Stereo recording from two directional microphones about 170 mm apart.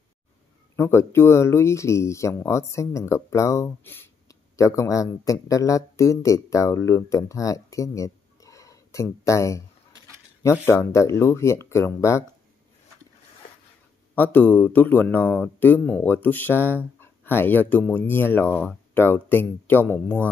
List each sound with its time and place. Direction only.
0.7 s speech: 15° left (ahead or behind)
14.1 s speech: 10° left (ahead or behind)